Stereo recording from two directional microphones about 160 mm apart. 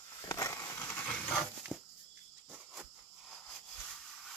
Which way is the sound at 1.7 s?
5° right (ahead or behind).